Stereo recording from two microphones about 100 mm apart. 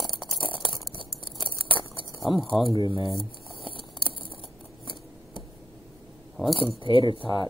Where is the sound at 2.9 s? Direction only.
65° right (ahead or behind).